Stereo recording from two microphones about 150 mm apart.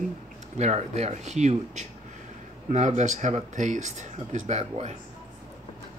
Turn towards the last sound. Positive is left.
turn(degrees=-45)  # may be behind; listen again after turning